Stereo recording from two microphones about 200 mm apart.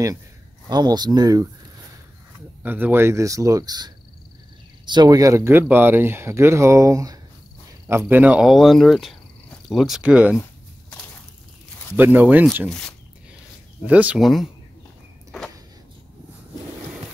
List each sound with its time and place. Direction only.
0.7 s speech: 20° right (ahead or behind)
2.6 s speech: 10° right (ahead or behind)
12.0 s speech: 10° right (ahead or behind)
12.6 s speech: 5° left (ahead or behind)
13.8 s speech: 5° right (ahead or behind)